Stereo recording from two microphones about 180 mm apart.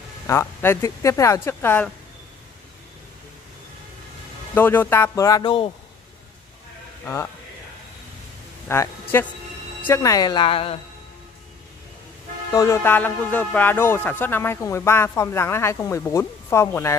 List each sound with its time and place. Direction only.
0.3 s speech: 15° left (ahead or behind)
4.6 s speech: 10° left (ahead or behind); by 5.7 s 25° left (ahead or behind)
8.6 s a woman's voice: 15° left (ahead or behind); by 10.8 s 30° left (ahead or behind)
12.5 s speech: 15° left (ahead or behind)